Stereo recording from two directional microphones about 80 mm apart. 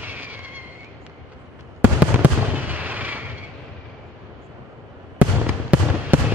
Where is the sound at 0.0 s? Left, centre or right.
Right.